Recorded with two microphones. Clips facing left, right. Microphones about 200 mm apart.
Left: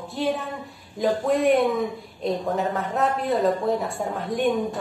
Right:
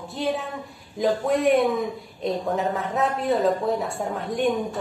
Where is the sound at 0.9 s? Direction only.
Centre (ahead or behind).